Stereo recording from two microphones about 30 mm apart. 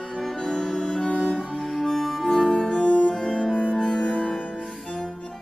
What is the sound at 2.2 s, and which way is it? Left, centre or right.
Music, centre.